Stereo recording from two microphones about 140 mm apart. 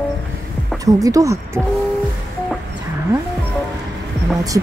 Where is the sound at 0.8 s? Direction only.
25° right (ahead or behind).